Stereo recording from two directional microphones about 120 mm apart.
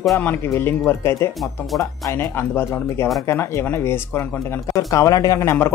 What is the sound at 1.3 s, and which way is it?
Speech, centre (ahead or behind).